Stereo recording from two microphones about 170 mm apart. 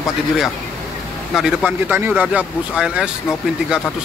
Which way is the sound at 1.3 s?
5° right (ahead or behind).